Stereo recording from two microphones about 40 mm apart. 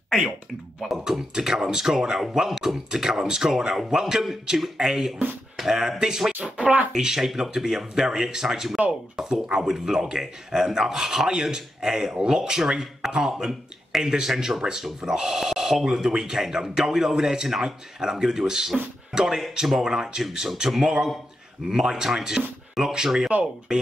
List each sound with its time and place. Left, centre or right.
0.7 s speech: centre
6.5 s speech: right
6.9 s speech: centre